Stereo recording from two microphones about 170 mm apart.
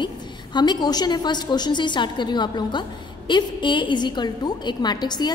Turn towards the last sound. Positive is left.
turn(degrees=25)  # may be behind; listen again after turning